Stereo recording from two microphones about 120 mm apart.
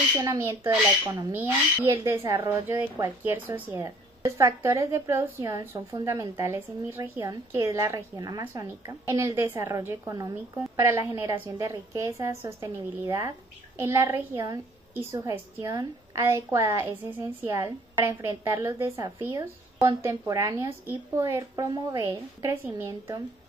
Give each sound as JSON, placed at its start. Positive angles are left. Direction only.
{"t": 0.3, "sound": "a woman's voice", "side_deg": -20}